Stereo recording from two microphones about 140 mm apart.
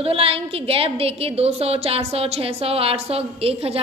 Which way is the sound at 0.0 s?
45° right (ahead or behind).